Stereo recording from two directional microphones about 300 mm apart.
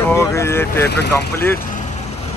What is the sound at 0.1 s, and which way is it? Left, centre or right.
Speech, centre.